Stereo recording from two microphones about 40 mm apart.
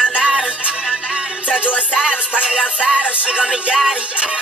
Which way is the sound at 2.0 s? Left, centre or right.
Right.